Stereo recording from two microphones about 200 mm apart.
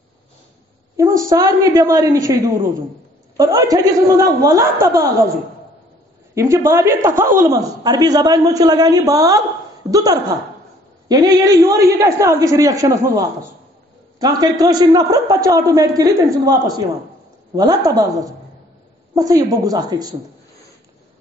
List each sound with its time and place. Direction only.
0.9 s a woman's voice: 15° right (ahead or behind)
6.3 s a woman's voice: 15° right (ahead or behind)
14.2 s a woman's voice: 20° right (ahead or behind)